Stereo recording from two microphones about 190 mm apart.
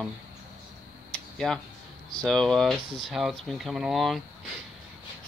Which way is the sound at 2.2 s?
Centre (ahead or behind).